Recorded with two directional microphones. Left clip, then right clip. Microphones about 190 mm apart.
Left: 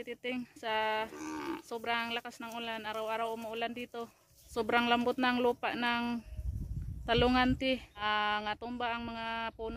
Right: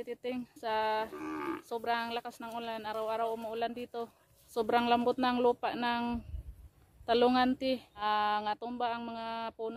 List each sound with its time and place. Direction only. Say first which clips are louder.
0.0 s speech: right 1 dB; 5° left (ahead or behind)
1.1 s speech: right 2 dB; 50° left (ahead or behind)
1.7 s speech: right 1 dB; 5° left (ahead or behind)